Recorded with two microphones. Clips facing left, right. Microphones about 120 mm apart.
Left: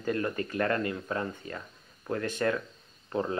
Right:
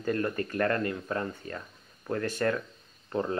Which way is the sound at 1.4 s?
45° right (ahead or behind).